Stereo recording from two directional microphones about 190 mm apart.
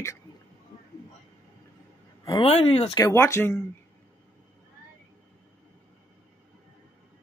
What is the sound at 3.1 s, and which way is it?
Speech, 15° left (ahead or behind).